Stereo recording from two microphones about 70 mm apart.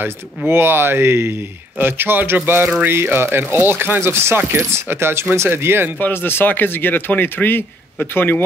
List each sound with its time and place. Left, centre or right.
0.5 s speech: right
5.9 s speech: left